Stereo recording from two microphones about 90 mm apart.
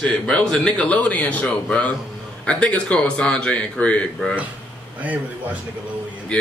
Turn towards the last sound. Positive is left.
turn(degrees=10)  # may be behind; listen again after turning